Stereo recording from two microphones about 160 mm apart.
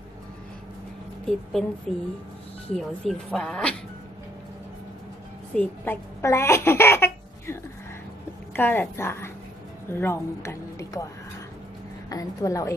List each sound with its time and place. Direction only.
1.2 s speech: centre (ahead or behind)
2.7 s speech: 5° left (ahead or behind)
5.5 s speech: 10° left (ahead or behind)
8.5 s a woman's voice: 10° left (ahead or behind)
12.1 s a woman's voice: 20° left (ahead or behind)